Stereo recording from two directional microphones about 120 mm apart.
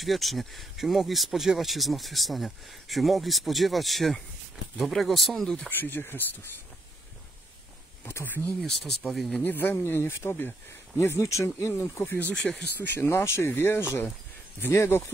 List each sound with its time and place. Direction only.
0.0 s speech: centre (ahead or behind)
5.7 s speech: 15° left (ahead or behind)
8.0 s speech: 20° left (ahead or behind)
8.5 s speech: 5° left (ahead or behind)
9.4 s speech: 15° left (ahead or behind)